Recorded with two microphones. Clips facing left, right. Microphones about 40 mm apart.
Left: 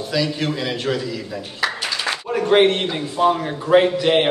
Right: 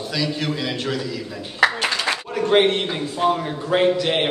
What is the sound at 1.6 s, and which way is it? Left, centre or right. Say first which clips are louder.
Speech: right 5 dB; right.